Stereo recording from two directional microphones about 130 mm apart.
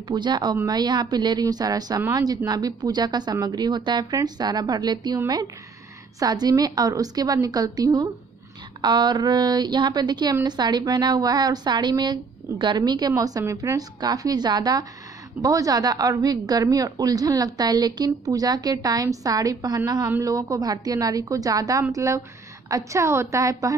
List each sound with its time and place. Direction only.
0.1 s a woman's voice: 35° right (ahead or behind)